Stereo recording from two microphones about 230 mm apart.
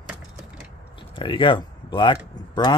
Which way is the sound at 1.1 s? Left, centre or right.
Left.